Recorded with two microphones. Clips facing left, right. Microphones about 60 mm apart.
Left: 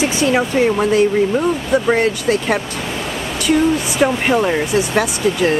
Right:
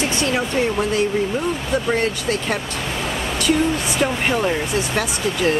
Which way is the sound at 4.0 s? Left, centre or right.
Centre.